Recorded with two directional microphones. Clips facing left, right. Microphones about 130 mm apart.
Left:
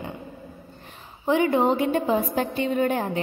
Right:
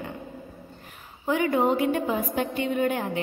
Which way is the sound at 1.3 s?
25° left (ahead or behind).